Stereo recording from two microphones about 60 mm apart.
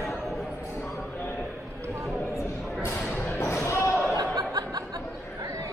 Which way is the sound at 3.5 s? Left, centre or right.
Left.